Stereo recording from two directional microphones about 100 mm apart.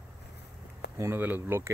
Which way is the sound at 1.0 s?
20° right (ahead or behind).